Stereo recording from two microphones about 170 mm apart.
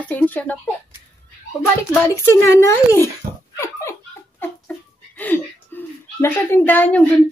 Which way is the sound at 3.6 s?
15° left (ahead or behind).